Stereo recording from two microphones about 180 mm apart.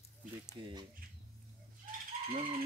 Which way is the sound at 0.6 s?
25° right (ahead or behind).